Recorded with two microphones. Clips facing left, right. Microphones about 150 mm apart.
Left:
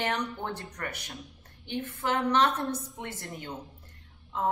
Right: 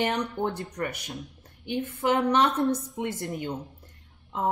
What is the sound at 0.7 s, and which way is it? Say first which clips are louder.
Speech: right 6 dB; 20° right (ahead or behind).